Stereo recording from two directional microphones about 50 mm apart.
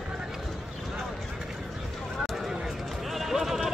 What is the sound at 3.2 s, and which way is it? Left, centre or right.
Sheep, centre.